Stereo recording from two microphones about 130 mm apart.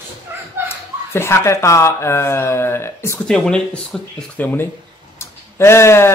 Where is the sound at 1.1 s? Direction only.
20° left (ahead or behind).